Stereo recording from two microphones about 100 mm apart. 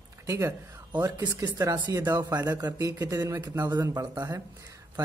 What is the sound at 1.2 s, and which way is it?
Speech, 45° right (ahead or behind).